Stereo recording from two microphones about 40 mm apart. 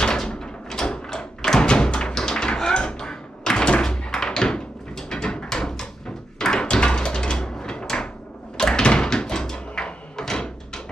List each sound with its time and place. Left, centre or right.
0.0 s door: centre
1.6 s music: left
6.3 s door: centre